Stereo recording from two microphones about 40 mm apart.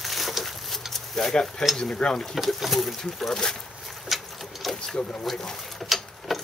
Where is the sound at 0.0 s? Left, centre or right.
Centre.